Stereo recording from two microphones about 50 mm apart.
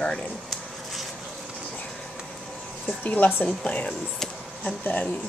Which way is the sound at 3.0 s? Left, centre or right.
Left.